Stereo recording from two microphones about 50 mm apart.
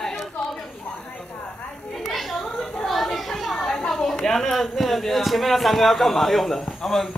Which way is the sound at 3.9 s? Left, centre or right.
Centre.